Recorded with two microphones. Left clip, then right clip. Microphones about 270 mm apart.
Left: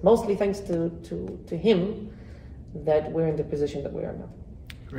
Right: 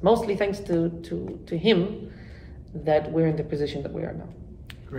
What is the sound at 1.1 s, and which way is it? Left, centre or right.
Speech, right.